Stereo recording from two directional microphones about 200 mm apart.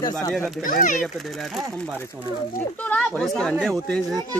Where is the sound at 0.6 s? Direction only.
40° left (ahead or behind).